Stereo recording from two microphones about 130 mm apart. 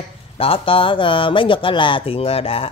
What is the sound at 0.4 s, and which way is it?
Speech, 45° left (ahead or behind).